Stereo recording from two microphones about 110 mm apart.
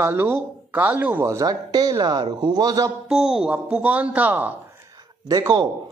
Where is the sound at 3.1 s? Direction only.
5° right (ahead or behind).